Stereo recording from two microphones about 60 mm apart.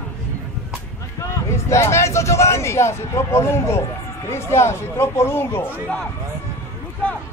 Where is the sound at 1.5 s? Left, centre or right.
Left.